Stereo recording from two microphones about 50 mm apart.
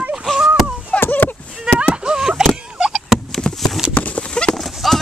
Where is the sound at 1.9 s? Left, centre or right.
Centre.